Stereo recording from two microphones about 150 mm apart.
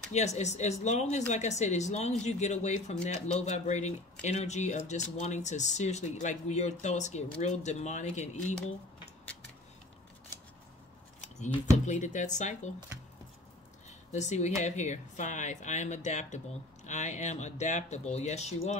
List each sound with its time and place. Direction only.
0.1 s speech: 50° left (ahead or behind)
11.1 s a sound: 50° left (ahead or behind)
11.8 s speech: 55° left (ahead or behind)
13.8 s speech: 50° left (ahead or behind)